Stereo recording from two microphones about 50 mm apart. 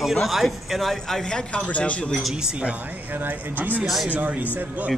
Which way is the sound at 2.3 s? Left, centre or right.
Centre.